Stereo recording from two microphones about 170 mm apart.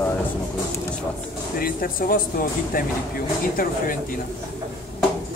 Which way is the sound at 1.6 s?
60° left (ahead or behind).